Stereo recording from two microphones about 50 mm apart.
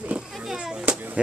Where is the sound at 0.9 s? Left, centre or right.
Right.